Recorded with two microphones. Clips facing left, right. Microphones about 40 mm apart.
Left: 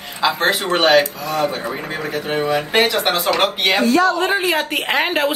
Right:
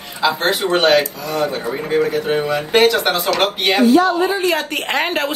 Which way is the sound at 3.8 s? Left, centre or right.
Left.